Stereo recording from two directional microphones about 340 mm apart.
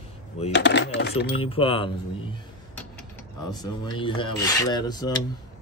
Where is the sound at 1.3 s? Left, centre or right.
Centre.